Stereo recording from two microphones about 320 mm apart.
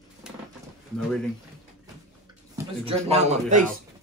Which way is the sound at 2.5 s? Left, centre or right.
Centre.